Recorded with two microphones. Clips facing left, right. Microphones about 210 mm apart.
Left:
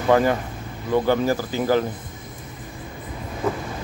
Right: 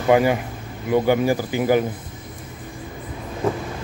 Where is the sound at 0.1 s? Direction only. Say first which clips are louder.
Right 1 dB; 10° right (ahead or behind).